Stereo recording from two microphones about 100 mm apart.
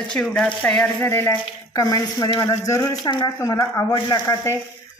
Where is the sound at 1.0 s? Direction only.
25° left (ahead or behind); by 3.3 s 45° left (ahead or behind).